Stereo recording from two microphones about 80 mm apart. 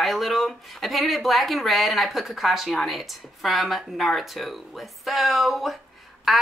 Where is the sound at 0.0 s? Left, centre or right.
Centre.